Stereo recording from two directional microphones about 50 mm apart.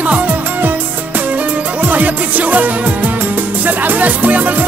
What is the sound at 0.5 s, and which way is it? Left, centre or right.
Music, right.